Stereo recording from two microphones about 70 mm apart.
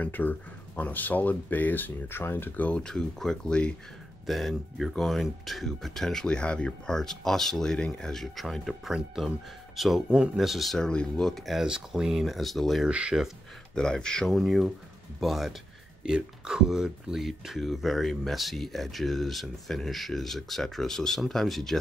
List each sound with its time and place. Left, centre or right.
0.0 s speech: left
2.7 s speech: centre
4.3 s speech: centre
10.0 s speech: centre
10.3 s speech: centre
10.8 s speech: centre
12.8 s speech: centre
13.7 s speech: centre